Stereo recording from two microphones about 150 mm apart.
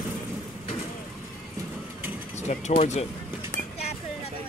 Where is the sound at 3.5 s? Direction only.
55° left (ahead or behind).